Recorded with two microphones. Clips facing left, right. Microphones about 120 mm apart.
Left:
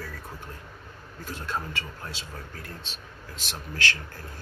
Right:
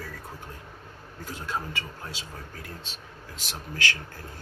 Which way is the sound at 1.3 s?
15° right (ahead or behind).